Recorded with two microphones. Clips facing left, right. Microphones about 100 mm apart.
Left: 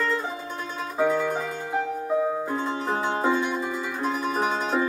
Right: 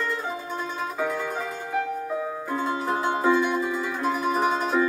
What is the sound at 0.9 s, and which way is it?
Music, 30° left (ahead or behind).